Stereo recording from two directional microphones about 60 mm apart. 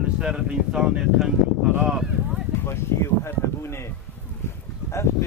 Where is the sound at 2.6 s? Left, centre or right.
Left.